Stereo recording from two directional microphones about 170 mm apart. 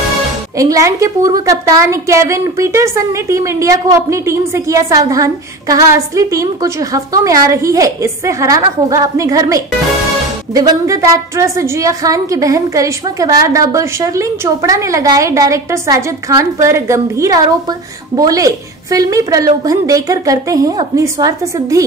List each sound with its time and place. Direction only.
0.6 s a woman's voice: 20° right (ahead or behind)